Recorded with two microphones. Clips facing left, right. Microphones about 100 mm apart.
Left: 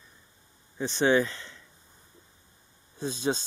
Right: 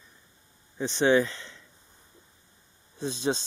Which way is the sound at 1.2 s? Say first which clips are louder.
Even; 5° left (ahead or behind).